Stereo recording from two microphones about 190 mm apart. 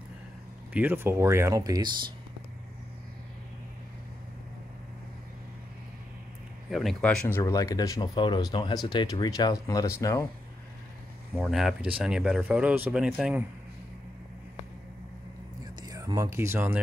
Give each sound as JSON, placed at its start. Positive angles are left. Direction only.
{"t": 0.7, "sound": "speech", "side_deg": -10}
{"t": 6.7, "sound": "speech", "side_deg": 0}
{"t": 7.3, "sound": "speech", "side_deg": 15}
{"t": 11.4, "sound": "speech", "side_deg": 0}
{"t": 15.6, "sound": "a sound", "side_deg": -20}